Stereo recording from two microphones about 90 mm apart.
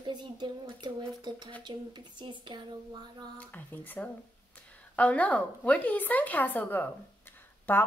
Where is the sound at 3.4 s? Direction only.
20° left (ahead or behind).